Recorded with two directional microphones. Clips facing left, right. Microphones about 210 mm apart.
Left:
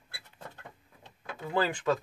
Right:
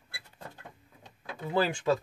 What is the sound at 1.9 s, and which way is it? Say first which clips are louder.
Speech: right 1 dB; 30° right (ahead or behind).